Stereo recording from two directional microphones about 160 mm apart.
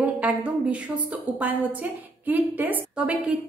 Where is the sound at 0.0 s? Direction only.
10° right (ahead or behind).